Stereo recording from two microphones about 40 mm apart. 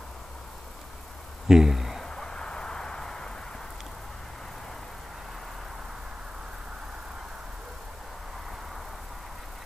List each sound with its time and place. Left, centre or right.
1.5 s speech: centre
2.0 s vehicle: centre